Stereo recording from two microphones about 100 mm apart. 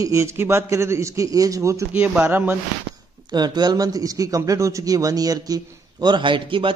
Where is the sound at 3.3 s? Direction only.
45° right (ahead or behind).